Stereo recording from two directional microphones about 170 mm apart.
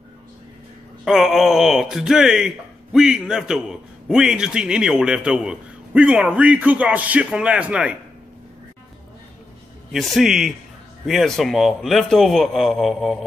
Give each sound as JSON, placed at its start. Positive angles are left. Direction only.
{"t": 1.0, "sound": "speech", "side_deg": 0}
{"t": 9.9, "sound": "speech", "side_deg": 0}